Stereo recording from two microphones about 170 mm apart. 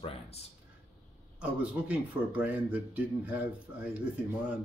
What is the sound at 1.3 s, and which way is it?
Speech, 5° right (ahead or behind).